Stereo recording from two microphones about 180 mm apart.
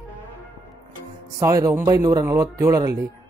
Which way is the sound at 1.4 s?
15° right (ahead or behind).